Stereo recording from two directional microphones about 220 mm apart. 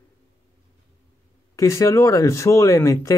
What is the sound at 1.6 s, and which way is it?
Speech, 15° left (ahead or behind).